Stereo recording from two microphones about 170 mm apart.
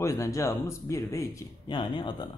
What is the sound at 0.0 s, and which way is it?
Speech, 15° left (ahead or behind).